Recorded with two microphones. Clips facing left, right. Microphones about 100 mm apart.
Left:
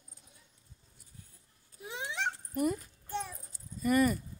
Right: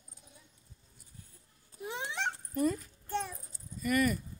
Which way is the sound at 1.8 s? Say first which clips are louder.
Even; centre (ahead or behind).